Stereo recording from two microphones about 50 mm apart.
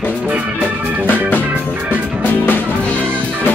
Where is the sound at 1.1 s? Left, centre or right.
Left.